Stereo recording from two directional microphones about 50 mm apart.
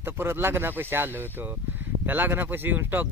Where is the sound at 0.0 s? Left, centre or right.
Right.